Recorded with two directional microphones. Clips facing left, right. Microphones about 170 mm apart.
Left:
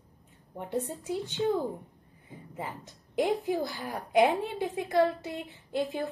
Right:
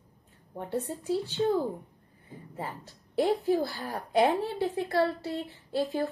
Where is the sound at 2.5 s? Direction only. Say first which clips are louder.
Right 1 dB; 20° left (ahead or behind).